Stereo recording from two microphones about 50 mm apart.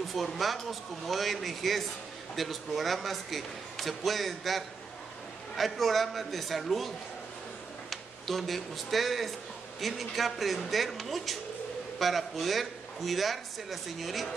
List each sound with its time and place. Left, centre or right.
0.1 s a man's voice: centre
7.9 s a man's voice: centre